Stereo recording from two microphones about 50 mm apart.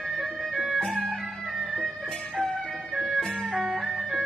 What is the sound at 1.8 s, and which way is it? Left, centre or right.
Music, centre.